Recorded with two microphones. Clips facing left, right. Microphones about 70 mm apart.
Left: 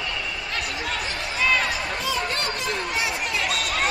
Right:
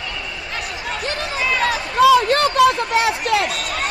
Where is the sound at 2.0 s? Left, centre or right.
Right.